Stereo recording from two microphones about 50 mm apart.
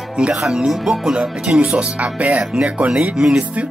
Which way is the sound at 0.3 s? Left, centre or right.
Centre.